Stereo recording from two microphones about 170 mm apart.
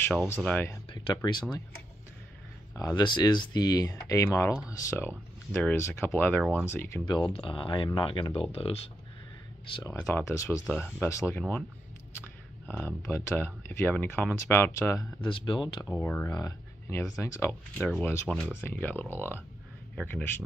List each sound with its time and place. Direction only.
0.4 s speech: 10° left (ahead or behind)
0.8 s speech: 30° left (ahead or behind)
2.7 s speech: 20° left (ahead or behind)
7.1 s speech: 30° left (ahead or behind)
9.9 s speech: 15° left (ahead or behind)
15.1 s speech: 30° left (ahead or behind)
15.9 s speech: 10° left (ahead or behind)